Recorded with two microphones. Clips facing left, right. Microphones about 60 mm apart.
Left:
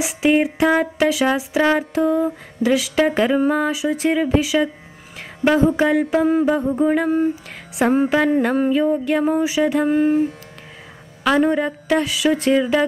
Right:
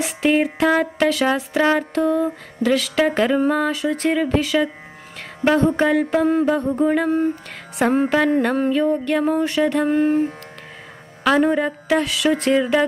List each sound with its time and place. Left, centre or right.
0.0 s mantra: centre
11.2 s mantra: centre